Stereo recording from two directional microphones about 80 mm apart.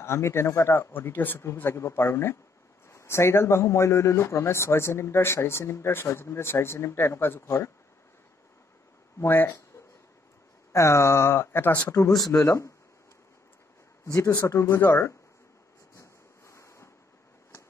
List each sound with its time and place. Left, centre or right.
0.0 s speech: left
9.2 s speech: left
10.7 s speech: left
12.0 s speech: left
12.4 s speech: left
14.0 s speech: left
16.0 s a sound: left